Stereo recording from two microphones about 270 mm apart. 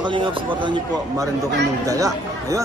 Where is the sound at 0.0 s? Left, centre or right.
Centre.